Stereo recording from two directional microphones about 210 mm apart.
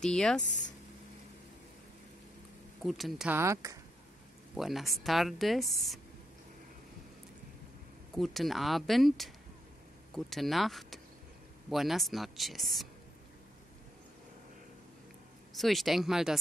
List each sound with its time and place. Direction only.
0.0 s speech: 5° left (ahead or behind)
0.4 s speech: 35° left (ahead or behind)
2.8 s speech: centre (ahead or behind); by 3.8 s 15° right (ahead or behind)
4.6 s speech: centre (ahead or behind)
8.1 s speech: centre (ahead or behind)
15.5 s speech: centre (ahead or behind)